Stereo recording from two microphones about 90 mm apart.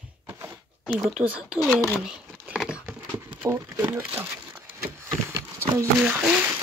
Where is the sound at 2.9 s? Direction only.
25° right (ahead or behind).